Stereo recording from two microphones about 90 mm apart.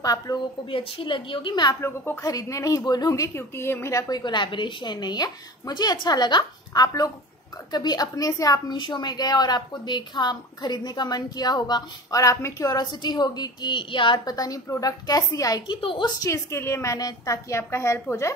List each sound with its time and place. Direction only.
0.0 s a woman's voice: 45° left (ahead or behind)
0.7 s a woman's voice: 75° left (ahead or behind); by 1.8 s 55° left (ahead or behind)
2.2 s a woman's voice: 40° left (ahead or behind)
3.3 s a woman's voice: 25° left (ahead or behind)
4.1 s a woman's voice: 55° left (ahead or behind)
14.2 s a woman's voice: 45° left (ahead or behind)
15.6 s a woman's voice: 70° left (ahead or behind)
16.2 s a woman's voice: 30° left (ahead or behind)